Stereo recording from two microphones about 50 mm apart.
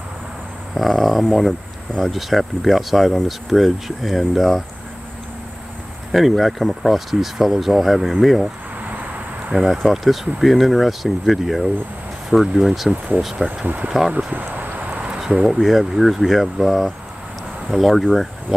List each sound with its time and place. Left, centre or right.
0.7 s speech: centre
6.1 s speech: centre
9.5 s speech: centre
13.7 s speech: right
14.5 s a sound: right
15.1 s a sound: centre
15.6 s speech: centre